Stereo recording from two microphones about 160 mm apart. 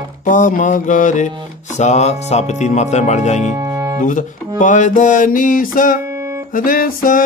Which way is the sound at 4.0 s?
55° left (ahead or behind).